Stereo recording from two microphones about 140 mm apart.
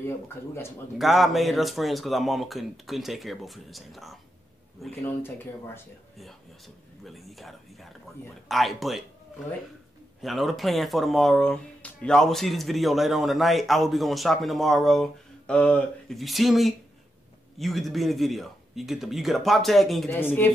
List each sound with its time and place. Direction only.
0.9 s speech: centre (ahead or behind)
5.0 s speech: 15° left (ahead or behind)
7.1 s speech: centre (ahead or behind)
10.2 s speech: centre (ahead or behind)
20.1 s speech: 15° left (ahead or behind)